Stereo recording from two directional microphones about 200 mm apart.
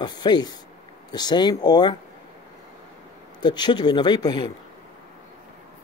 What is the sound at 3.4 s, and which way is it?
Speech, 20° left (ahead or behind).